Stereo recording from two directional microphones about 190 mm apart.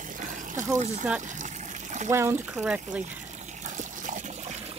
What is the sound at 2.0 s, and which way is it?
Speech, 15° right (ahead or behind).